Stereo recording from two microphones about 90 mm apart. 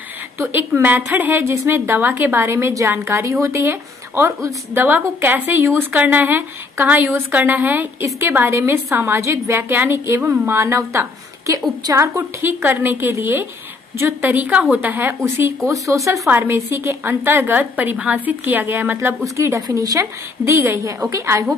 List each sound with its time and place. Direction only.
0.4 s a woman's voice: 25° right (ahead or behind)
4.7 s a woman's voice: 20° right (ahead or behind)
16.3 s a woman's voice: 25° right (ahead or behind)